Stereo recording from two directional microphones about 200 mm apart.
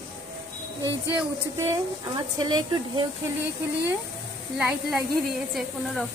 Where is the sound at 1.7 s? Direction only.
20° right (ahead or behind).